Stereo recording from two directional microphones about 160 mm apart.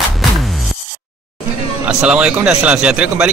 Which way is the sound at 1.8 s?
5° right (ahead or behind).